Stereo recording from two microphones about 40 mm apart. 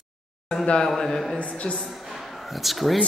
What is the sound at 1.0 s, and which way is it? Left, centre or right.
Speech, centre.